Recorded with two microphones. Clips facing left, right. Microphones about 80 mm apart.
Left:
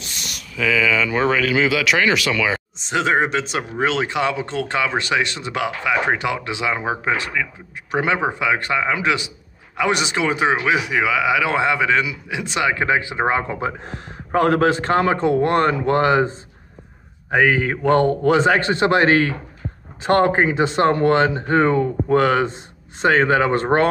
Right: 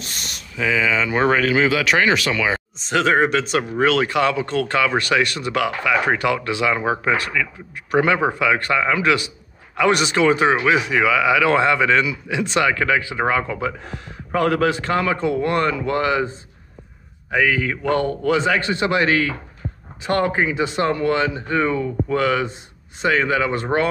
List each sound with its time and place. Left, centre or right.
0.0 s speech: right
2.8 s speech: centre
12.7 s speech: left